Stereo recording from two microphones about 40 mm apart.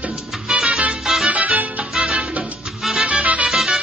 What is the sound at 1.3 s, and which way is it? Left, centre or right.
Music, right.